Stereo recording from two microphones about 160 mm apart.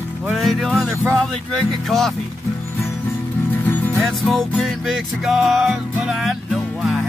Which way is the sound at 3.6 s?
10° left (ahead or behind).